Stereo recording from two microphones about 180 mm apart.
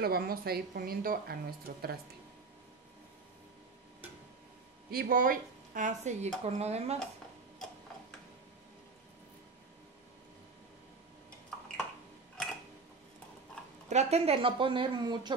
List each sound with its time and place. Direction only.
0.0 s speech: 55° right (ahead or behind)
4.9 s speech: 50° right (ahead or behind); by 7.0 s 35° right (ahead or behind)
11.5 s a sound: 5° left (ahead or behind)
13.8 s speech: 35° right (ahead or behind)